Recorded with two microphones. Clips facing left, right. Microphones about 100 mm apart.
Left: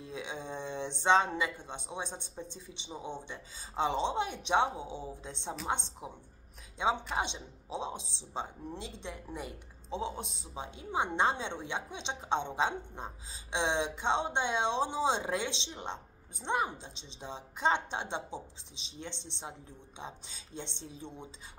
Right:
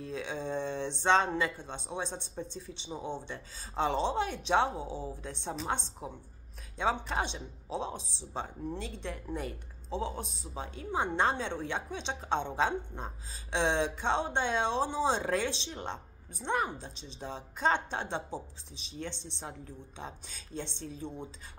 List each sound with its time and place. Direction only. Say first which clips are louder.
0.0 s speech: right 4 dB; 20° left (ahead or behind)